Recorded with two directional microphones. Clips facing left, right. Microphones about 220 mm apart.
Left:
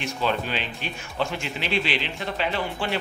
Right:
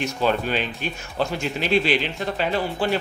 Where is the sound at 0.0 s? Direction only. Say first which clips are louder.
Right 4 dB; 45° right (ahead or behind).